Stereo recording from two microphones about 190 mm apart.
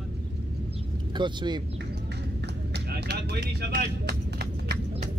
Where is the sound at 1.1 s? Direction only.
25° right (ahead or behind).